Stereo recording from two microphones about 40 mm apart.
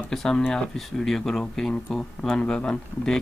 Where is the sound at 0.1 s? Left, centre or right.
Centre.